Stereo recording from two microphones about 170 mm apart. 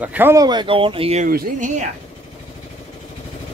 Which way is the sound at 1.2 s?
50° right (ahead or behind).